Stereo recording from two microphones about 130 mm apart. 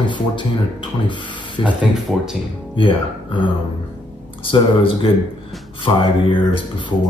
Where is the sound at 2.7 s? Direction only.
40° left (ahead or behind).